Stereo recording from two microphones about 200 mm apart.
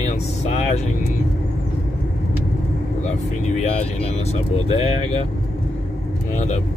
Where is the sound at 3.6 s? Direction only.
30° left (ahead or behind).